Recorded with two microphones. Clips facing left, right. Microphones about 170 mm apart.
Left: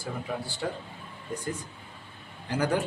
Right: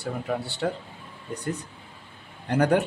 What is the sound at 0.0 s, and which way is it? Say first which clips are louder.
A man's voice: right 5 dB; 70° right (ahead or behind).